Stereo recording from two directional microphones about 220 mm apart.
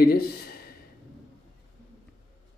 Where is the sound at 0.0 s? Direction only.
45° left (ahead or behind).